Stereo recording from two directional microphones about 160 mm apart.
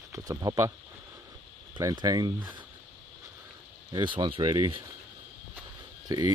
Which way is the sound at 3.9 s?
30° right (ahead or behind).